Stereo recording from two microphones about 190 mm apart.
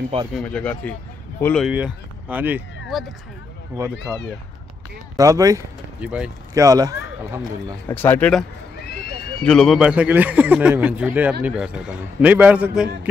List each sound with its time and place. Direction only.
0.4 s speech: 5° left (ahead or behind)
1.7 s speech: 5° right (ahead or behind)
5.1 s speech: 20° right (ahead or behind)
5.9 s speech: 5° right (ahead or behind)
6.5 s speech: 20° right (ahead or behind)
7.9 s speech: 10° left (ahead or behind); by 13.1 s 5° right (ahead or behind)